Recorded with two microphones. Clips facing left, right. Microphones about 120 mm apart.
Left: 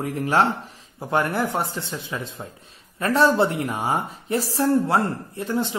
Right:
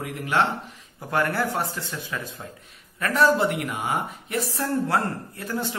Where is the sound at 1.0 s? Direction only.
25° left (ahead or behind).